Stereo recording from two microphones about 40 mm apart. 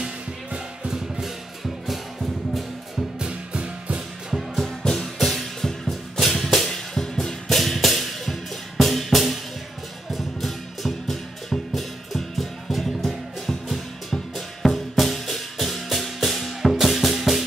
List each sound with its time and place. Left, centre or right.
0.9 s music: centre
3.2 s music: right
4.6 s music: centre
5.9 s music: centre